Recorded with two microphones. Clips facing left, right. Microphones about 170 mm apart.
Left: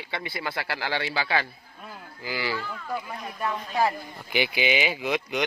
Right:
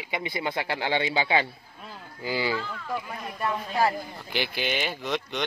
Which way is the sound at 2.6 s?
5° left (ahead or behind).